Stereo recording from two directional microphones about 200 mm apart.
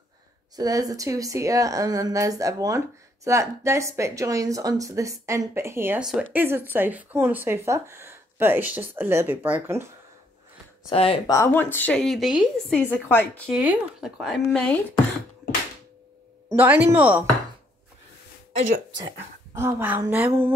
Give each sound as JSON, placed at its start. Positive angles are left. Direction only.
{"t": 0.6, "sound": "speech", "side_deg": -20}
{"t": 10.9, "sound": "speech", "side_deg": 30}
{"t": 11.2, "sound": "speech", "side_deg": 15}
{"t": 13.5, "sound": "speech", "side_deg": -5}
{"t": 16.5, "sound": "speech", "side_deg": -10}
{"t": 18.9, "sound": "speech", "side_deg": -15}